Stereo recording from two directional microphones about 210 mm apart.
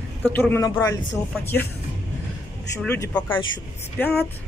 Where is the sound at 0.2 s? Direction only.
10° left (ahead or behind).